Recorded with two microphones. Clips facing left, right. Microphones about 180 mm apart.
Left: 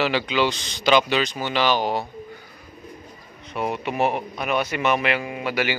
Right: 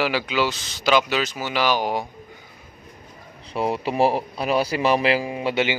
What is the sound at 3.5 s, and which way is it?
A man's voice, 30° right (ahead or behind).